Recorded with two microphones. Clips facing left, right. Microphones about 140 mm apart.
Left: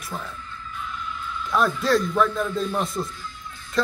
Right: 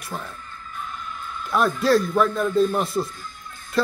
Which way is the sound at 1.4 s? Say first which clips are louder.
Right 2 dB; 5° right (ahead or behind).